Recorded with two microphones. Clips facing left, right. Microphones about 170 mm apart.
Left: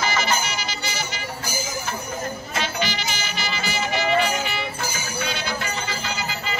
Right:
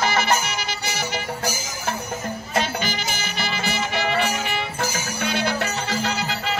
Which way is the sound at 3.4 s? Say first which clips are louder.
Right 2 dB; 60° right (ahead or behind).